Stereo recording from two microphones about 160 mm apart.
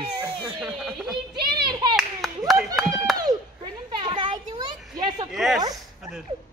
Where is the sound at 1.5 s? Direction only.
25° right (ahead or behind).